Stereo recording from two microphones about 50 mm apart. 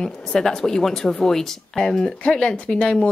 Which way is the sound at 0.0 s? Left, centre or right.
Centre.